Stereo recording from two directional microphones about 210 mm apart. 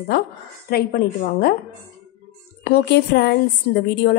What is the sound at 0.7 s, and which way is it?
Speech, 45° left (ahead or behind).